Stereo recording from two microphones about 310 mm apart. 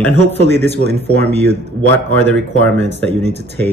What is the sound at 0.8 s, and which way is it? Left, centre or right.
Speech, left.